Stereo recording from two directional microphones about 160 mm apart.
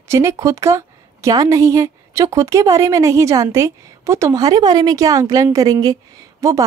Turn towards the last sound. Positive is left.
turn(degrees=-20)  # may be behind; listen again after turning